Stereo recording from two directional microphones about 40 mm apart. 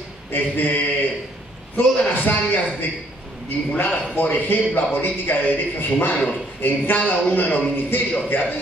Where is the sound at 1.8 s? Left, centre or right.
Left.